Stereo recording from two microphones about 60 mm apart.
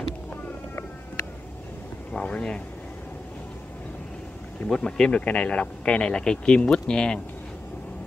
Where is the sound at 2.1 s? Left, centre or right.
Centre.